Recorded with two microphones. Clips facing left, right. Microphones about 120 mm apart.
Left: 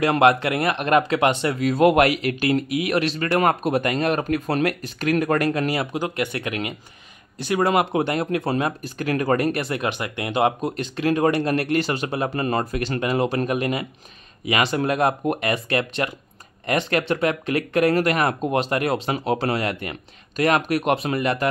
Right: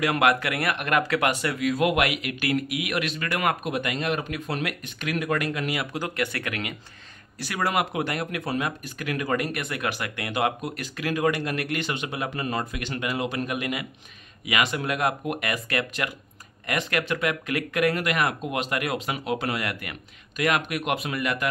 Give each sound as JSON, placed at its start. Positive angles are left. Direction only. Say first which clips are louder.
{"t": 0.0, "sound": "speech", "louder": "left 5 dB", "side_deg": 30}
{"t": 5.9, "sound": "speech", "louder": "left 4 dB", "side_deg": 20}